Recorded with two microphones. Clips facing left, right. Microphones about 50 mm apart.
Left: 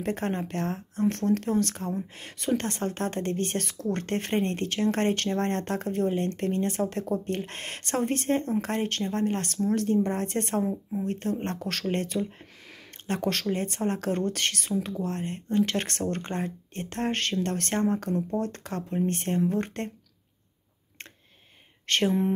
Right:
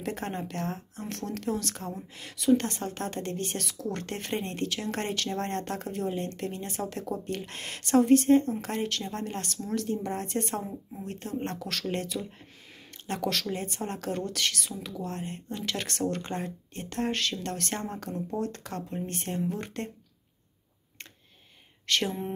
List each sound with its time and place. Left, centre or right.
0.0 s a woman's voice: left
6.8 s a woman's voice: left
9.0 s speech: left
9.3 s a woman's voice: left
9.6 s a woman's voice: left
10.7 s speech: left
11.1 s a woman's voice: left
21.9 s speech: left